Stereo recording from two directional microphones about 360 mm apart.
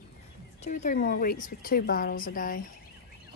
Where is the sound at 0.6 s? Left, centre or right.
Left.